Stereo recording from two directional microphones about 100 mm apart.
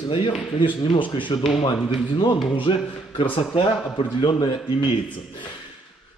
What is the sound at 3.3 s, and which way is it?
Speech, 65° left (ahead or behind).